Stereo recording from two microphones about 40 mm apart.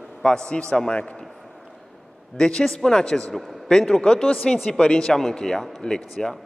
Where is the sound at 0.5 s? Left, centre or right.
Left.